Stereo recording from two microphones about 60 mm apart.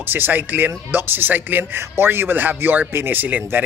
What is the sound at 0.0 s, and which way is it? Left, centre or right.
Speech, right.